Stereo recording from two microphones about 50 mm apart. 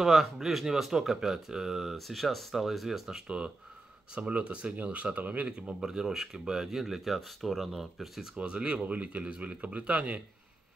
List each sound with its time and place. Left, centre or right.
0.0 s speech: centre
3.3 s speech: right
5.8 s speech: centre
8.4 s speech: right